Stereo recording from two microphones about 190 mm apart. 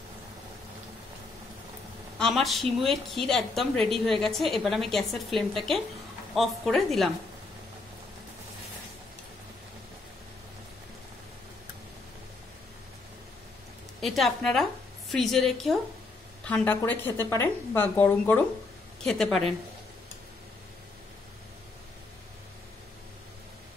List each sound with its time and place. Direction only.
2.1 s a woman's voice: centre (ahead or behind)
14.0 s a woman's voice: centre (ahead or behind)